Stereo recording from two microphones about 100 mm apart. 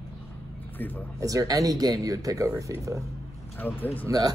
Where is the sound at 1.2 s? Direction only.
35° right (ahead or behind).